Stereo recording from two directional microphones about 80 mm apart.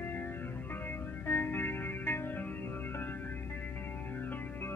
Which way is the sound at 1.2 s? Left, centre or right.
Left.